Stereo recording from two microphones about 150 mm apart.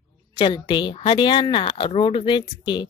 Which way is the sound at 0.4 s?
30° left (ahead or behind).